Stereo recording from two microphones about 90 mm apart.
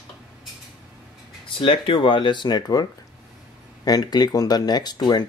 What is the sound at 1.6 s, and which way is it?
Speech, 75° left (ahead or behind).